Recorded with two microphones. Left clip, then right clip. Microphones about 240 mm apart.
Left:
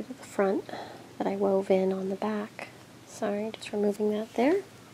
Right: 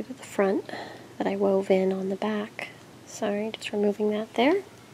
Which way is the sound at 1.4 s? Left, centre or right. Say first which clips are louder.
Right 2 dB; centre.